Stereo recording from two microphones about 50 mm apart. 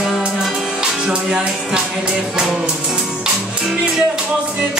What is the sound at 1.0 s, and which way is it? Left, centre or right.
Music, centre.